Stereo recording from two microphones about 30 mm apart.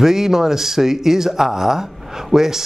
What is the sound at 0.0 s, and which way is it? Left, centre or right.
Speech, centre.